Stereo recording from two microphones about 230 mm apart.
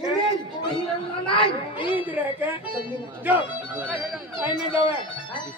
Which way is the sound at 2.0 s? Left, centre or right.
Centre.